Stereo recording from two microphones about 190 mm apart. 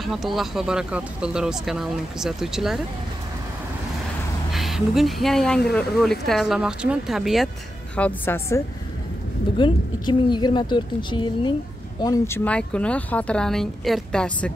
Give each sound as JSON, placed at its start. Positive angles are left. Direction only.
{"t": 0.0, "sound": "speech", "side_deg": 0}
{"t": 4.5, "sound": "speech", "side_deg": 0}
{"t": 7.9, "sound": "a woman's voice", "side_deg": 10}
{"t": 9.6, "sound": "a woman's voice", "side_deg": 25}
{"t": 12.4, "sound": "speech", "side_deg": 5}